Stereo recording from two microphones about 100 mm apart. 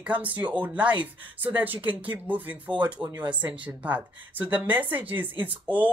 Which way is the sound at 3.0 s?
50° right (ahead or behind).